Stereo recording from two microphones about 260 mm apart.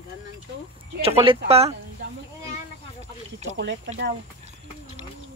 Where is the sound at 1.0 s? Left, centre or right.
Right.